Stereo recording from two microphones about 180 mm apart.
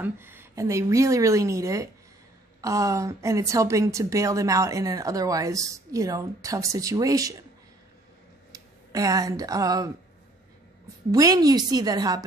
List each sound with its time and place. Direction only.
0.0 s a woman's voice: 10° right (ahead or behind)
8.5 s speech: 20° right (ahead or behind)
11.1 s a woman's voice: 20° right (ahead or behind)